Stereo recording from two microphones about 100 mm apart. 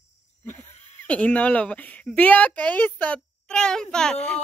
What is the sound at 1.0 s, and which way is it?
A child's voice, 15° left (ahead or behind).